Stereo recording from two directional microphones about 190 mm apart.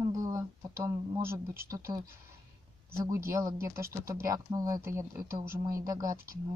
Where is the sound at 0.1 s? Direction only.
20° right (ahead or behind).